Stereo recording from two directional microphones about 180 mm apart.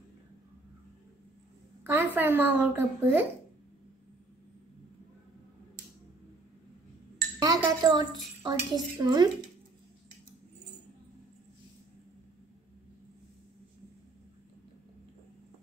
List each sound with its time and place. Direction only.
1.9 s a child's voice: 15° right (ahead or behind)
7.3 s a woman's voice: 20° right (ahead or behind)